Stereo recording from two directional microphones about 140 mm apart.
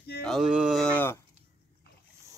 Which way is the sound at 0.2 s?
Centre (ahead or behind).